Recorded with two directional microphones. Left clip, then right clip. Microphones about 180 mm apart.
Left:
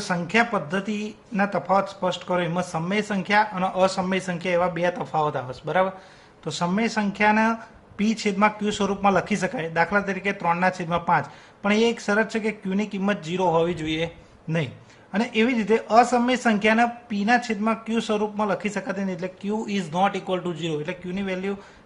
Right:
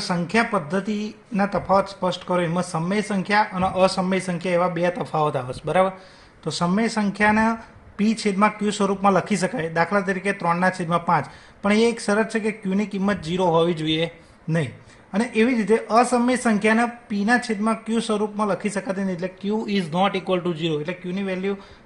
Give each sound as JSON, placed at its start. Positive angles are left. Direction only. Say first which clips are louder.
{"t": 0.0, "sound": "a man's voice", "louder": "even", "side_deg": -30}
{"t": 6.4, "sound": "a man's voice", "louder": "right 2 dB", "side_deg": -20}